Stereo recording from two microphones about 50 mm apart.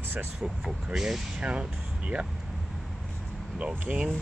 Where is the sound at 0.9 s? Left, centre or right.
Centre.